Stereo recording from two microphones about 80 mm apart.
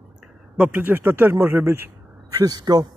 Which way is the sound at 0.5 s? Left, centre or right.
Centre.